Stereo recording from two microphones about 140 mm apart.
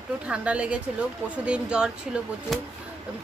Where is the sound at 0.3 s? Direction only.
10° right (ahead or behind).